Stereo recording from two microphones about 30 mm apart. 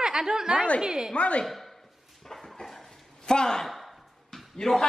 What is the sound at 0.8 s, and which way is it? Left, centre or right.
Speech, centre.